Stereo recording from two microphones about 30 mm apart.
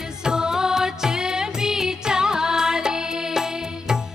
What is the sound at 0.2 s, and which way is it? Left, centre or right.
Music, right.